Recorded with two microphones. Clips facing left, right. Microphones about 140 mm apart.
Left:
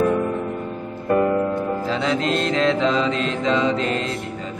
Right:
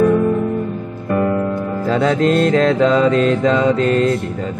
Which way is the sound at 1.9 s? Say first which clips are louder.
Right 10 dB; 50° right (ahead or behind).